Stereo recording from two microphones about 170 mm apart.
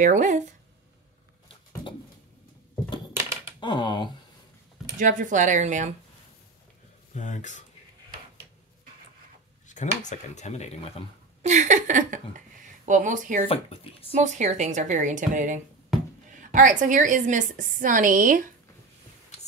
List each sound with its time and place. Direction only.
0.0 s a woman's voice: 50° right (ahead or behind)
3.6 s speech: 25° left (ahead or behind)
4.9 s a woman's voice: 50° right (ahead or behind)
7.2 s speech: 45° left (ahead or behind)
10.0 s speech: 45° left (ahead or behind)
11.4 s speech: 45° right (ahead or behind)
13.5 s speech: 35° left (ahead or behind)
14.1 s a woman's voice: 45° right (ahead or behind)